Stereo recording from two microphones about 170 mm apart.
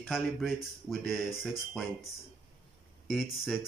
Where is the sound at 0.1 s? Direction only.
Centre (ahead or behind).